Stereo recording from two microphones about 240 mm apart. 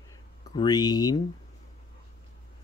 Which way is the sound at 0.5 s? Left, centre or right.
Centre.